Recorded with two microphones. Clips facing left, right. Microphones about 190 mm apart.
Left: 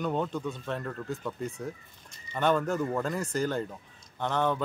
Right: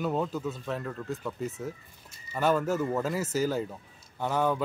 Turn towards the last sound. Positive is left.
turn(degrees=-5)  # may be behind; listen again after turning